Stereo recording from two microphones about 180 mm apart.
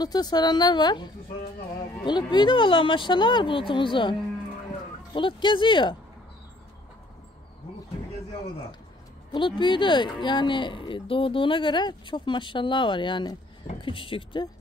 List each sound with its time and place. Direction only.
0.0 s speech: 20° left (ahead or behind)
9.3 s speech: 25° left (ahead or behind)